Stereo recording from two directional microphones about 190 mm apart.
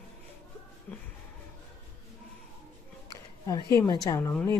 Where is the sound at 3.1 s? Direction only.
20° left (ahead or behind).